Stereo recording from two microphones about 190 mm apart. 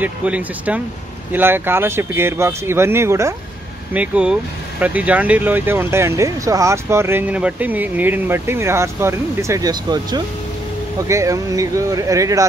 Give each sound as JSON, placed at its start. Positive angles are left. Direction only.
{"t": 0.0, "sound": "speech", "side_deg": -5}